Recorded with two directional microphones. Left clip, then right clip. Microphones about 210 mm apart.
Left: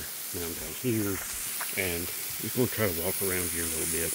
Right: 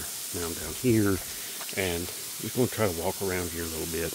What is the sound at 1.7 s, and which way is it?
Speech, 15° right (ahead or behind).